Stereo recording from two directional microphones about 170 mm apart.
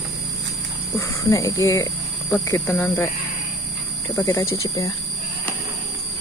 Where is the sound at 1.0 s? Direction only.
20° left (ahead or behind).